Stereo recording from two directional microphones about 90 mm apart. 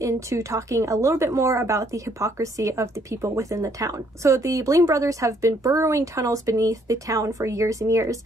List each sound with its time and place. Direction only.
0.0 s a woman's voice: 35° right (ahead or behind)